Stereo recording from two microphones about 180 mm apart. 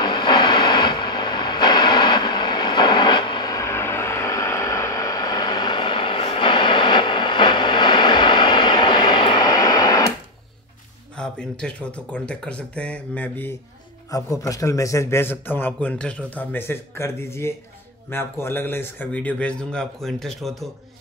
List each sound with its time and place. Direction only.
0.0 s vehicle: 25° left (ahead or behind)
11.1 s a man's voice: 5° left (ahead or behind)